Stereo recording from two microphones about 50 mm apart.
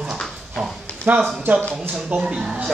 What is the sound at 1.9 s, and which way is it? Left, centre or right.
Speech, centre.